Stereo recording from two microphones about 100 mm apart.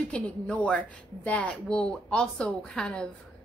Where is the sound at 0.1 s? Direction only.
10° left (ahead or behind).